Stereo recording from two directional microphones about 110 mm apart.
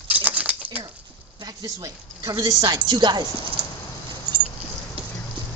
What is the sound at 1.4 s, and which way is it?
A woman's voice, 35° right (ahead or behind).